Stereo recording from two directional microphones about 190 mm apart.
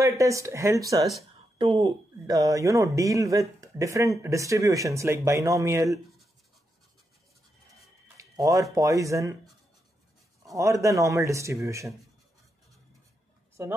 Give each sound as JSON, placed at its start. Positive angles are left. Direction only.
{"t": 0.0, "sound": "a man's voice", "side_deg": -15}
{"t": 8.2, "sound": "a sound", "side_deg": -15}
{"t": 8.7, "sound": "a man's voice", "side_deg": -15}
{"t": 10.4, "sound": "a man's voice", "side_deg": -15}